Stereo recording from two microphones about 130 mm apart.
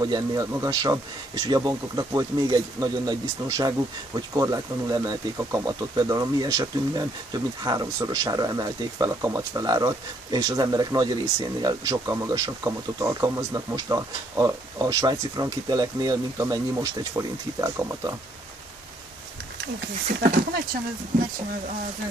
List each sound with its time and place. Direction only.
0.0 s speech: 30° right (ahead or behind)